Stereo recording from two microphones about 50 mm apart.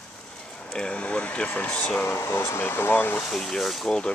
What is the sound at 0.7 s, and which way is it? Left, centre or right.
Speech, left.